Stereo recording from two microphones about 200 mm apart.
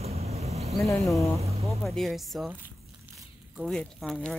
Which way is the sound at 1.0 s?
Centre (ahead or behind).